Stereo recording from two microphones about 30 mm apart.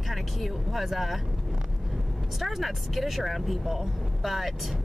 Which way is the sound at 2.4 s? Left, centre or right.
Centre.